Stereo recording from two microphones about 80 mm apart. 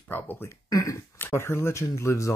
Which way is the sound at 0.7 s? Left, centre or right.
Left.